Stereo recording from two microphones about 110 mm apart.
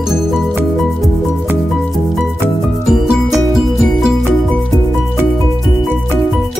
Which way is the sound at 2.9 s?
5° right (ahead or behind).